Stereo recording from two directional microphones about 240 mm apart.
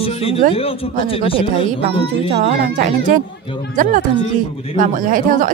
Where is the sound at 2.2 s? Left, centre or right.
Right.